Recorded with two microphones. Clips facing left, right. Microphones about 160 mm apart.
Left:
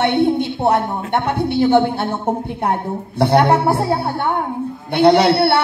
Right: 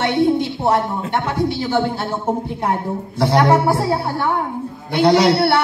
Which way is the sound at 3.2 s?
60° left (ahead or behind).